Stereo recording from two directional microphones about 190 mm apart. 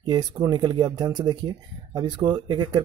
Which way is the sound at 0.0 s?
20° right (ahead or behind).